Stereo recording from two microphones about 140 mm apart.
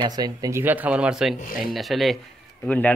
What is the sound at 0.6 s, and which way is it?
Speech, 10° right (ahead or behind).